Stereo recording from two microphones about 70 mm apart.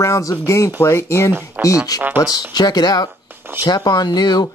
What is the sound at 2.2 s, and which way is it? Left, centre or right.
Speech, left.